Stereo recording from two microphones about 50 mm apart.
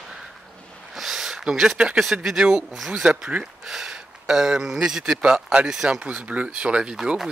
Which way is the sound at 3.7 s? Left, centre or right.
Centre.